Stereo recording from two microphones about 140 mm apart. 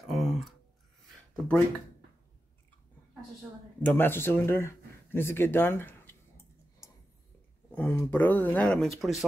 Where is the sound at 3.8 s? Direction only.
15° left (ahead or behind).